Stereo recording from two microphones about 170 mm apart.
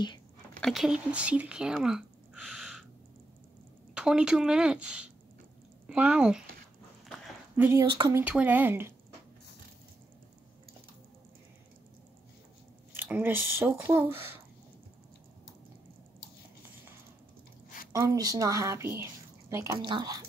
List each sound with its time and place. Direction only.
0.6 s speech: centre (ahead or behind)
3.9 s a woman's voice: 5° right (ahead or behind)
7.5 s speech: 10° right (ahead or behind)
7.8 s a woman's voice: 30° right (ahead or behind)
8.1 s speech: 10° right (ahead or behind)
12.9 s speech: 10° right (ahead or behind)
17.9 s a woman's voice: 20° right (ahead or behind)